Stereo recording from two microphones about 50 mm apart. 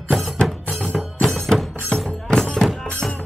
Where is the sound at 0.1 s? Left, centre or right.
Centre.